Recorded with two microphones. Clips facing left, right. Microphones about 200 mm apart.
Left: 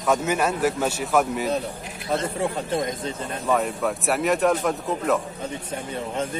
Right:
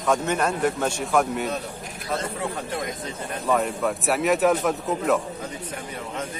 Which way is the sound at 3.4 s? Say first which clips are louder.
Even; centre (ahead or behind).